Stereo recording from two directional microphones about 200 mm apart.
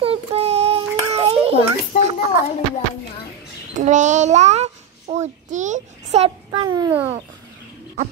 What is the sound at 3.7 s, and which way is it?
A child's voice, 35° right (ahead or behind).